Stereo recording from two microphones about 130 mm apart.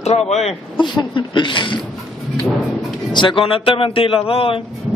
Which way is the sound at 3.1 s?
40° left (ahead or behind).